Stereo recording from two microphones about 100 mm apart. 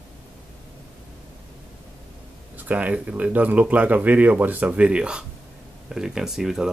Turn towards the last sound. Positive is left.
turn(degrees=-5)  # may be behind; listen again after turning